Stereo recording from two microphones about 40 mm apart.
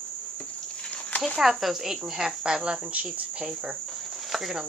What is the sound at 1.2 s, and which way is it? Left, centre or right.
Speech, centre.